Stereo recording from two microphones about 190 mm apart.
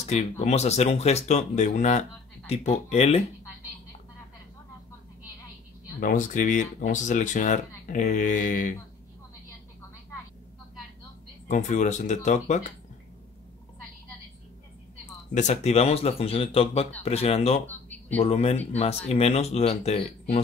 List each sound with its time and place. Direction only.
0.0 s speech: 35° left (ahead or behind)
5.9 s speech: 45° left (ahead or behind)
11.4 s speech: 40° left (ahead or behind)
15.3 s speech: 35° left (ahead or behind)
17.6 s a sound: 10° left (ahead or behind)
18.2 s speech: 30° left (ahead or behind)